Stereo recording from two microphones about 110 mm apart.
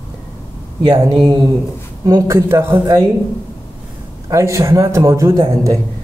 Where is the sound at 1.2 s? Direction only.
40° right (ahead or behind).